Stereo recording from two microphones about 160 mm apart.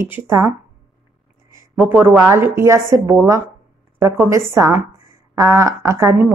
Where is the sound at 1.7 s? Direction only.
15° right (ahead or behind).